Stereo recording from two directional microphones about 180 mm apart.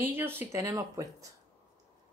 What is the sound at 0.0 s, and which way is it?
A woman's voice, 10° right (ahead or behind).